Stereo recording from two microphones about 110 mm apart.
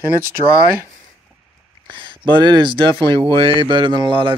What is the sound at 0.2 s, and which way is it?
Speech, 20° right (ahead or behind).